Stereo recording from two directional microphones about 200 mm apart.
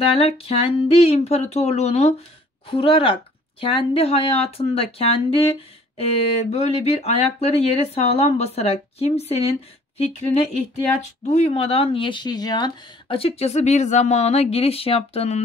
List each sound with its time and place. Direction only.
0.0 s speech: 30° left (ahead or behind)